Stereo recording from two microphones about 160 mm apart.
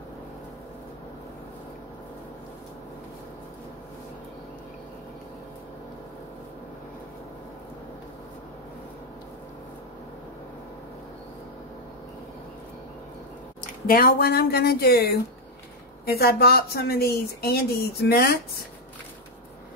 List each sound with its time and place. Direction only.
13.8 s a woman's voice: 65° left (ahead or behind)